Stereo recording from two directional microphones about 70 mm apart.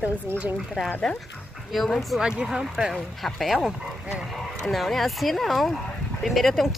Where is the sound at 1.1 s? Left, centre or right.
Centre.